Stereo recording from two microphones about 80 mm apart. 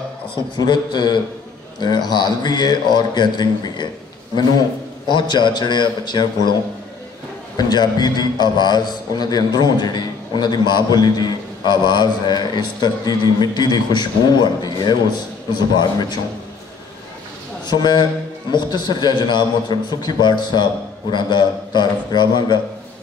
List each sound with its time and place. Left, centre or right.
0.6 s a man's voice: left
5.1 s a man's voice: left
7.5 s a man's voice: left
17.6 s a man's voice: left